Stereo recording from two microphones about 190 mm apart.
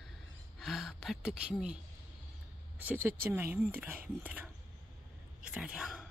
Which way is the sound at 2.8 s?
10° right (ahead or behind).